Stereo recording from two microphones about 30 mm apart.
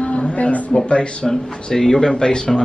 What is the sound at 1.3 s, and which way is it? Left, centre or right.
A man's voice, centre.